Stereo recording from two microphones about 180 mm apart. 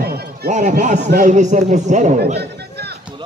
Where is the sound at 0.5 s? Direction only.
40° right (ahead or behind).